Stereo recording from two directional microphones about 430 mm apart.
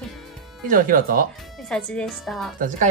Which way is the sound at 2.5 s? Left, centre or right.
Centre.